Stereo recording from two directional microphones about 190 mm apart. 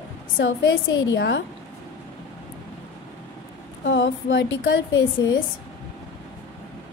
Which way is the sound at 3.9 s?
70° left (ahead or behind).